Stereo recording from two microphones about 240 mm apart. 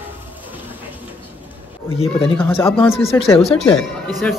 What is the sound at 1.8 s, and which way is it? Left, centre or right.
Speech, left.